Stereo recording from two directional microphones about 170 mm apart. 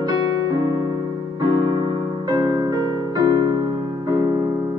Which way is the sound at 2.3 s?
20° right (ahead or behind).